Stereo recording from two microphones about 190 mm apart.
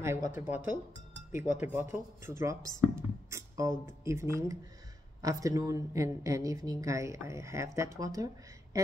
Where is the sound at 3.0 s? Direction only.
15° right (ahead or behind).